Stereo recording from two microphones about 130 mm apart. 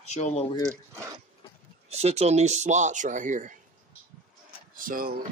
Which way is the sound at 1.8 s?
55° right (ahead or behind).